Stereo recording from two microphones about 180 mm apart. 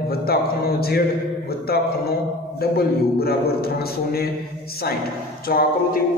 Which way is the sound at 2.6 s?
60° left (ahead or behind).